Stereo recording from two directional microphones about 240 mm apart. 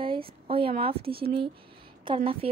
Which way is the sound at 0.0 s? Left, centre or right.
Right.